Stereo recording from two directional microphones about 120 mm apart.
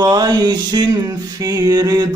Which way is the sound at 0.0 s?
35° right (ahead or behind).